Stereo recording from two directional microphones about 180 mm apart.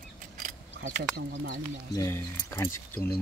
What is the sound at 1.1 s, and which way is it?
Speech, 55° right (ahead or behind).